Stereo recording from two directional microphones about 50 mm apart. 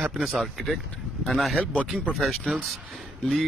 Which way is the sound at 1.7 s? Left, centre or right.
Right.